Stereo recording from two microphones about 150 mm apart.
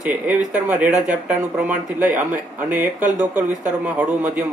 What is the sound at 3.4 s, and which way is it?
Speech, 55° right (ahead or behind).